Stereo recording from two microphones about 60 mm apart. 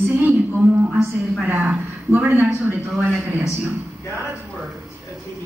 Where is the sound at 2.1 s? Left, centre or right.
Right.